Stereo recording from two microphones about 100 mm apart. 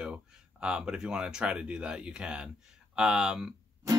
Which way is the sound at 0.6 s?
10° right (ahead or behind).